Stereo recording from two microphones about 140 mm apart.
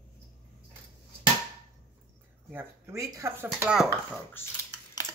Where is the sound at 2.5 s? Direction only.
15° right (ahead or behind).